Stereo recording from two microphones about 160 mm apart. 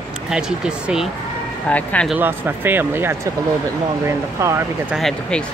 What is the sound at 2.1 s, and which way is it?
Speech, 10° right (ahead or behind).